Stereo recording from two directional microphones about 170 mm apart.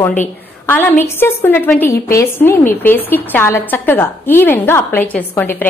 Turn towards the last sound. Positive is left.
turn(degrees=10)  # may be behind; listen again after turning